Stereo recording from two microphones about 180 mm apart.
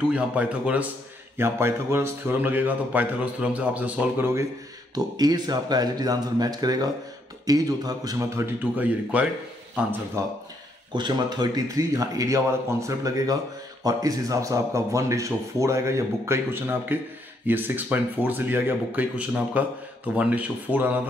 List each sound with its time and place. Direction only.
0.0 s speech: 5° right (ahead or behind)